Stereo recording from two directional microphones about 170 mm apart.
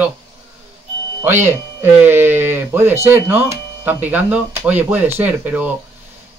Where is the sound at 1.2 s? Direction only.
15° right (ahead or behind).